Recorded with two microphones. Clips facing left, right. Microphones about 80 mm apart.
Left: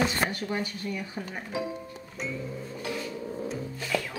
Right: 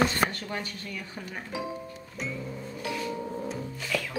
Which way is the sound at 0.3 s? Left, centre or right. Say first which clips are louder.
Left 4 dB; centre.